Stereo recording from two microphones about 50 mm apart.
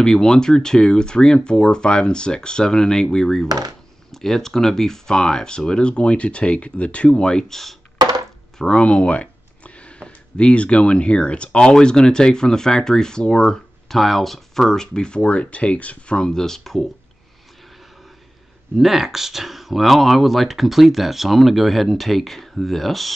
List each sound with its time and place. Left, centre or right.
0.0 s speech: centre
18.8 s speech: centre